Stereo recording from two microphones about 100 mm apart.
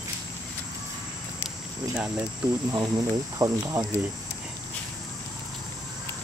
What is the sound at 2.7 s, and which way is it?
Speech, 35° right (ahead or behind).